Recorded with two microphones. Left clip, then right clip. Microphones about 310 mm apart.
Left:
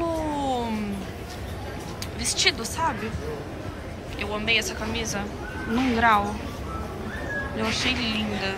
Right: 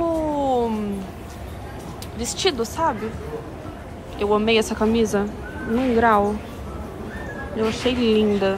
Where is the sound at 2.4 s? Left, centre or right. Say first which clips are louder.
Right 2 dB; centre.